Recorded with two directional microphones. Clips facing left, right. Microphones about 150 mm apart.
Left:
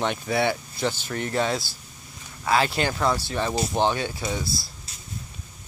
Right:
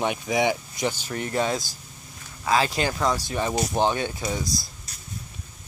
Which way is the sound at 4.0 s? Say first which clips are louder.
Right 1 dB; 20° right (ahead or behind).